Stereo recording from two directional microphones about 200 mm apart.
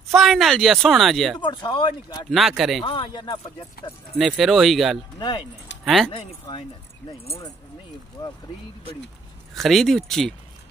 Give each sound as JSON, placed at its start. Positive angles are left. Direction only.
{"t": 0.1, "sound": "speech", "side_deg": 0}
{"t": 1.4, "sound": "speech", "side_deg": 25}
{"t": 2.3, "sound": "speech", "side_deg": 0}
{"t": 2.8, "sound": "speech", "side_deg": 25}
{"t": 4.2, "sound": "speech", "side_deg": 0}
{"t": 6.1, "sound": "speech", "side_deg": 25}
{"t": 8.2, "sound": "speech", "side_deg": 20}
{"t": 9.6, "sound": "speech", "side_deg": 0}